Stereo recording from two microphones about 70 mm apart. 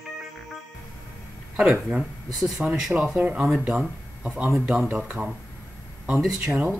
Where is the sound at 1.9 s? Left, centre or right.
Centre.